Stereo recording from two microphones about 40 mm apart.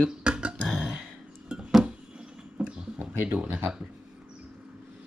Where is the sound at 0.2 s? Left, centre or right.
Right.